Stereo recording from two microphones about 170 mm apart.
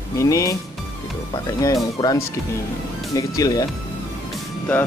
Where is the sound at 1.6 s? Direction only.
20° left (ahead or behind).